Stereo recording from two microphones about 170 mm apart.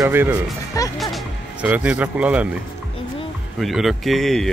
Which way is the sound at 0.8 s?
20° left (ahead or behind).